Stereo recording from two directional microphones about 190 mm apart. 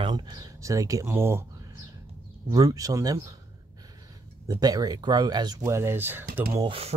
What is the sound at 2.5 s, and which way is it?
Speech, 20° right (ahead or behind).